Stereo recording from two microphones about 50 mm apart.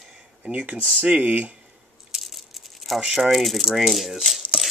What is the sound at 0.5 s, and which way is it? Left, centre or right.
Speech, right.